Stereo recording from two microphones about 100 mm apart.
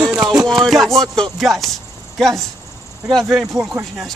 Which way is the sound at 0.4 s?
Centre (ahead or behind).